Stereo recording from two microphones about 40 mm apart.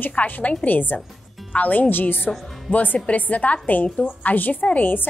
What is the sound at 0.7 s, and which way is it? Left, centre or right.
A woman's voice, left.